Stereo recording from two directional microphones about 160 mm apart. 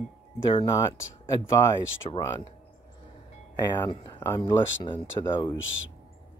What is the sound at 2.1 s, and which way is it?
Speech, 35° left (ahead or behind).